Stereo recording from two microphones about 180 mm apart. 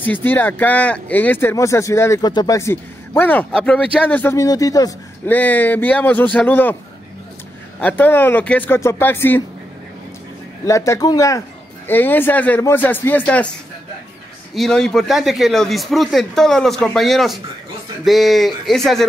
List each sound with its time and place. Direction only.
0.0 s speech: 10° left (ahead or behind)
5.3 s speech: 10° left (ahead or behind)
7.8 s speech: 10° left (ahead or behind)
10.6 s speech: 15° left (ahead or behind)
14.5 s speech: centre (ahead or behind)